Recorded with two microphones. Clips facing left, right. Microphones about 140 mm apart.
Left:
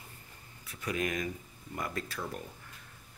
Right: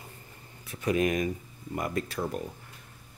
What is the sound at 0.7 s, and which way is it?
Speech, 25° right (ahead or behind).